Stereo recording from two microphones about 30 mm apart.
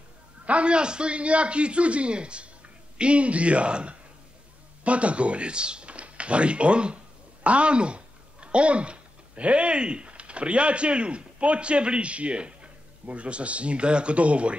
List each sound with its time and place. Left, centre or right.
0.5 s a man's voice: right